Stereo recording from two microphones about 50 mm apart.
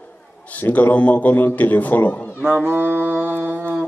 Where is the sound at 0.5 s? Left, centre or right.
Left.